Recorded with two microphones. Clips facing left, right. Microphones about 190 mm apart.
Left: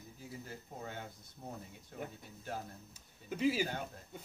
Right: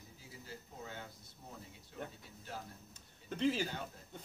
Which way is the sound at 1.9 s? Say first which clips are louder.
Left 2 dB; 50° left (ahead or behind).